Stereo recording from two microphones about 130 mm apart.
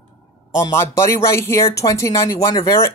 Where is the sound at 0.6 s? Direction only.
20° left (ahead or behind).